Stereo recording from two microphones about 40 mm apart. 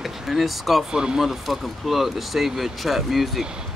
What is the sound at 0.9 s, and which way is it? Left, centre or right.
Speech, centre.